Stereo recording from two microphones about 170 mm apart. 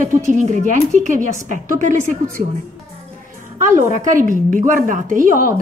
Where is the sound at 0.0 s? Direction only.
45° right (ahead or behind).